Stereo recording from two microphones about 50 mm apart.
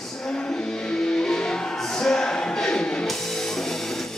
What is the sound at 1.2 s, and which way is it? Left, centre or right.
Music, centre.